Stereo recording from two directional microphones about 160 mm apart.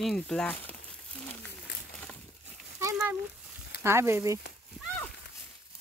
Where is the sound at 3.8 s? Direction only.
15° right (ahead or behind).